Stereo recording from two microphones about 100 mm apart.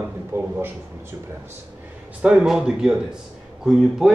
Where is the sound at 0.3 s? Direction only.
25° right (ahead or behind).